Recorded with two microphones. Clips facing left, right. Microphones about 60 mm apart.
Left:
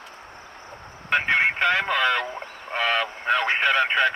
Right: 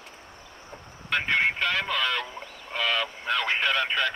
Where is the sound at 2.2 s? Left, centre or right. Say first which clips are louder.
Left 6 dB; left.